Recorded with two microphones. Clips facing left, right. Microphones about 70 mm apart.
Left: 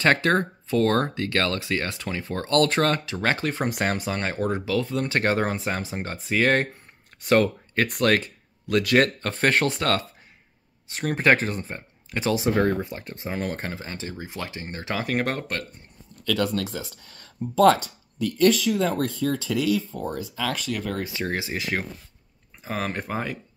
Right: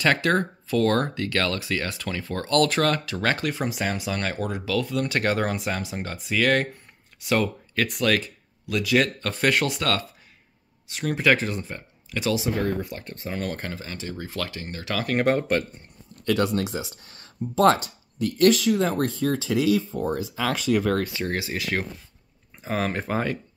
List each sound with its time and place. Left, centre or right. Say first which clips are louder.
0.0 s speech: left 1 dB; left
3.6 s speech: left 2 dB; left
4.1 s speech: left 2 dB; left
7.2 s speech: left 4 dB; left
12.8 s speech: left 1 dB; left
15.0 s speech: right 7 dB; centre
16.5 s speech: right 2 dB; centre
18.5 s speech: right 1 dB; centre
21.0 s speech: right 1 dB; centre
22.6 s speech: right 2 dB; centre